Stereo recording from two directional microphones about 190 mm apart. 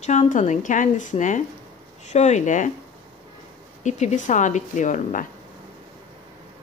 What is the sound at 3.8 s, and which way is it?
A woman's voice, 40° left (ahead or behind).